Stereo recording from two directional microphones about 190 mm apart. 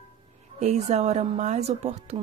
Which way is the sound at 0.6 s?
35° right (ahead or behind).